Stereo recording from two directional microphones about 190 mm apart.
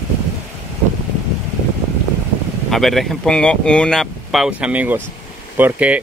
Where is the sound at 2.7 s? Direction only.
Centre (ahead or behind).